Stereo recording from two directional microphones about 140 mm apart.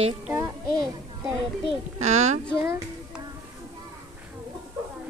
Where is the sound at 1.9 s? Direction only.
50° right (ahead or behind).